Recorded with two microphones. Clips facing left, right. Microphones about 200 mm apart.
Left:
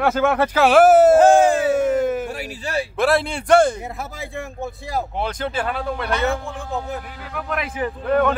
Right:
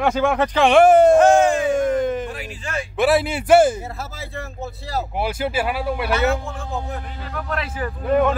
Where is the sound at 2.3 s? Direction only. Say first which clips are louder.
Left 3 dB; 40° left (ahead or behind).